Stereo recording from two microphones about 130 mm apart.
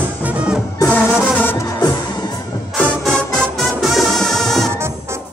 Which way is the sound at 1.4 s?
15° left (ahead or behind).